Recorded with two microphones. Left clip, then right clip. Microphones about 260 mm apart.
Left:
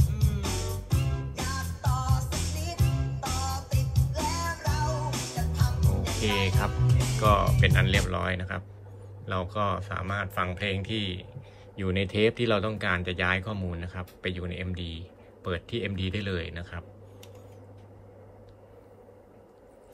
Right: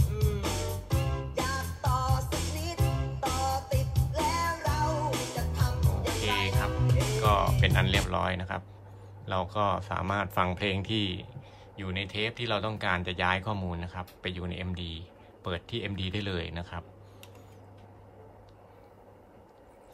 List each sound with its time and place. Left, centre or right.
0.0 s music: right
6.2 s music: centre
6.7 s music: right
7.2 s speech: centre